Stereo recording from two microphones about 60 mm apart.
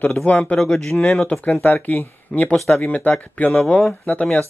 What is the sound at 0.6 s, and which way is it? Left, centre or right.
Speech, centre.